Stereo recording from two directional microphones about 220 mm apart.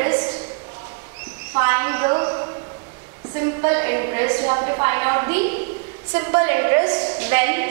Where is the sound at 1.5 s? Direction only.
15° right (ahead or behind).